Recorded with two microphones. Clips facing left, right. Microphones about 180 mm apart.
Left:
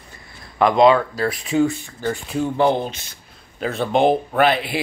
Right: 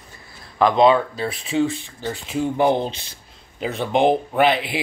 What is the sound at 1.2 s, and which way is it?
Speech, 30° right (ahead or behind).